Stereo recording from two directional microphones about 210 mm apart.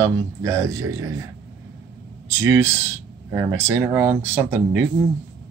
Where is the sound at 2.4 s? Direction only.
15° right (ahead or behind).